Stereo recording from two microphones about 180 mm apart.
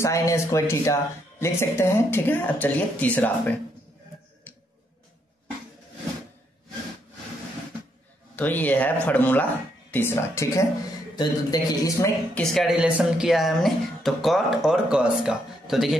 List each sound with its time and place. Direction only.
0.0 s speech: 15° left (ahead or behind)
8.4 s a man's voice: 10° left (ahead or behind)
12.4 s speech: centre (ahead or behind)